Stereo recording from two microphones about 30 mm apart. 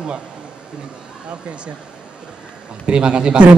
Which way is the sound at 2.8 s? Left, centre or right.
Right.